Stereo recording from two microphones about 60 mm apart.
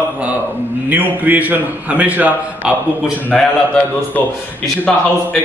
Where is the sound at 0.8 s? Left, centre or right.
Right.